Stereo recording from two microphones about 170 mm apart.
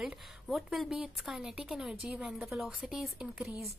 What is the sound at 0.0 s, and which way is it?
A woman's voice, centre (ahead or behind).